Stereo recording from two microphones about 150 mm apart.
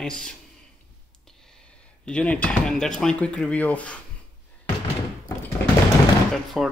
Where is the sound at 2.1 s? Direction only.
10° left (ahead or behind).